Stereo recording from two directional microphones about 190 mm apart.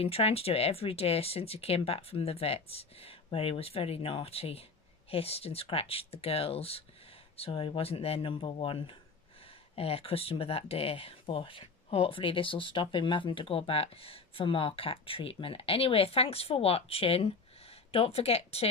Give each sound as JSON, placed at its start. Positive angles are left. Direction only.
{"t": 0.0, "sound": "speech", "side_deg": 30}